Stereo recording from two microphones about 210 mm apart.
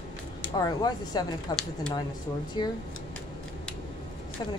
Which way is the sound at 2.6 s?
20° left (ahead or behind).